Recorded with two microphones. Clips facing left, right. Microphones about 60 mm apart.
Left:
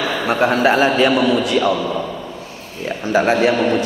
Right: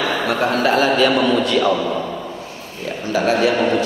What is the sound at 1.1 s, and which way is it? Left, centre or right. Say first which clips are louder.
Speech: left 1 dB; centre.